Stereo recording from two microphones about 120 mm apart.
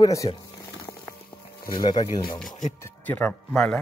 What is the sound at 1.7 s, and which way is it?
Speech, 40° left (ahead or behind).